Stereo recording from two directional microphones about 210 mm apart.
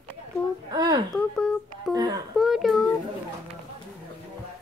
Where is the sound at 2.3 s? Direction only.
Centre (ahead or behind).